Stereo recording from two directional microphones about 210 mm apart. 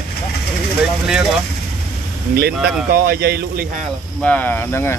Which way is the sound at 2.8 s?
45° right (ahead or behind).